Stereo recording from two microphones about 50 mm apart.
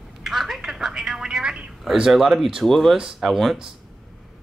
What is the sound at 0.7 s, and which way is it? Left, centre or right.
Speech, centre.